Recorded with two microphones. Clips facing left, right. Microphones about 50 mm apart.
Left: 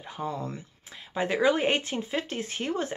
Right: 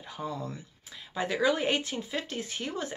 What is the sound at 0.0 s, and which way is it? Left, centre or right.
Speech, left.